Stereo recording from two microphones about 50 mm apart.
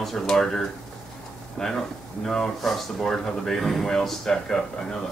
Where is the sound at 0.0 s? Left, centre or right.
Centre.